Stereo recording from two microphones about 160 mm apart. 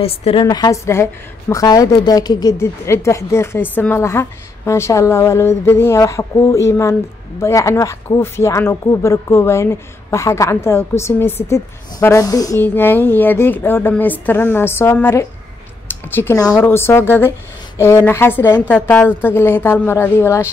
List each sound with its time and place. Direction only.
0.0 s a woman's voice: 35° left (ahead or behind)
0.5 s a woman's voice: 20° left (ahead or behind)